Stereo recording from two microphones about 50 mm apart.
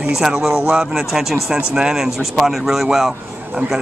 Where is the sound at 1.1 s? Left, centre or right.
Centre.